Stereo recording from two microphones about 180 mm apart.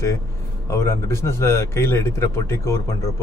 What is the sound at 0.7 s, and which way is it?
A man's voice, 15° left (ahead or behind).